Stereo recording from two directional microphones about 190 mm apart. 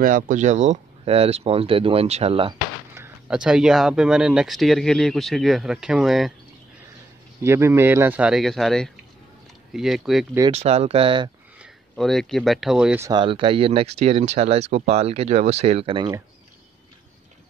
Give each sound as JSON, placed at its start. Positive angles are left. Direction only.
{"t": 0.0, "sound": "speech", "side_deg": -45}
{"t": 2.9, "sound": "speech", "side_deg": -10}
{"t": 7.4, "sound": "speech", "side_deg": -15}
{"t": 10.5, "sound": "speech", "side_deg": -35}
{"t": 11.6, "sound": "speech", "side_deg": 0}
{"t": 13.0, "sound": "speech", "side_deg": -25}